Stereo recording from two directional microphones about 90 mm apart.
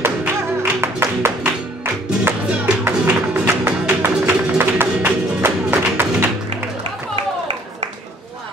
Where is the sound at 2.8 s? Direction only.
20° right (ahead or behind).